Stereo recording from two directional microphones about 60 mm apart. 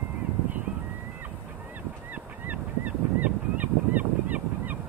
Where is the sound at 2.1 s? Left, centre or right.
Right.